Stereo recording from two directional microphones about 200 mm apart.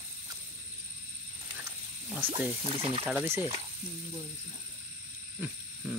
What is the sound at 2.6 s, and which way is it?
Speech, 25° right (ahead or behind).